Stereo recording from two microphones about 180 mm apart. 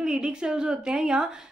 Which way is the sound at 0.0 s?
5° right (ahead or behind).